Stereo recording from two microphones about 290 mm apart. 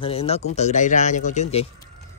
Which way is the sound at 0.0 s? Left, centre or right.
Centre.